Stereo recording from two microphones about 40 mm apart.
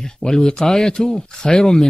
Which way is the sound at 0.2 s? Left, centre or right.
Centre.